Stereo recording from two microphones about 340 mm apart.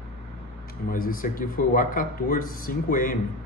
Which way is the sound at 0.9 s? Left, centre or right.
Left.